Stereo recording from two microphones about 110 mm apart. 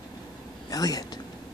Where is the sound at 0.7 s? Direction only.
35° left (ahead or behind).